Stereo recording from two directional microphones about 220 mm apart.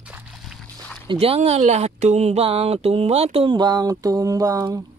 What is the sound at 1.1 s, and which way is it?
Speech, 25° right (ahead or behind).